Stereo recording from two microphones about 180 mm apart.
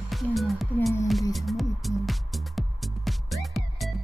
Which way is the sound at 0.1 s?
Centre (ahead or behind).